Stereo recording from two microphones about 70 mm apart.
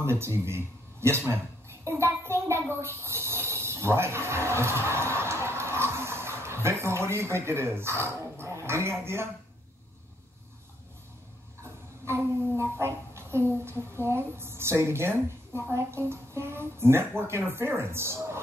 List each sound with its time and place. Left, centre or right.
0.0 s speech: right
1.9 s a sound: right
11.6 s a child's voice: right